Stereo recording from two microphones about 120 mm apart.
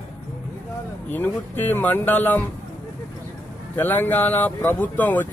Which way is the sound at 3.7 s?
15° left (ahead or behind).